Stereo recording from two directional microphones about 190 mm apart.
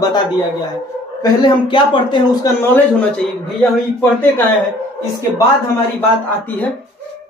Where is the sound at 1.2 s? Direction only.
25° left (ahead or behind).